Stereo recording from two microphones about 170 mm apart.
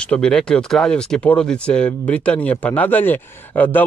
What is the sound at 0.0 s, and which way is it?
Speech, 5° left (ahead or behind).